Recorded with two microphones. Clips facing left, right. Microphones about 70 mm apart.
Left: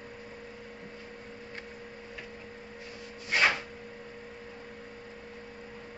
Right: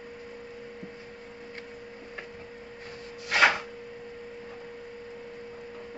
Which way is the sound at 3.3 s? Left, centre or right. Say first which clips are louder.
Right 4 dB; right.